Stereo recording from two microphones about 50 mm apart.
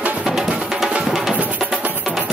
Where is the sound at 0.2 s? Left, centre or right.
Centre.